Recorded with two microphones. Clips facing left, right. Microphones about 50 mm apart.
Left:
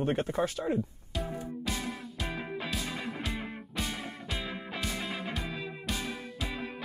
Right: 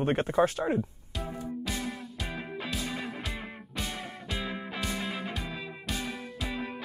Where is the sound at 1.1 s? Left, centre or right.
Centre.